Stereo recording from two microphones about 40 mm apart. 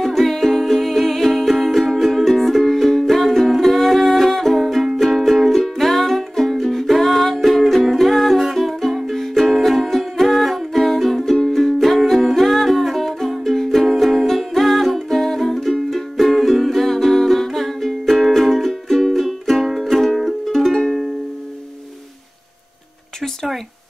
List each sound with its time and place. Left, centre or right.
0.0 s music: centre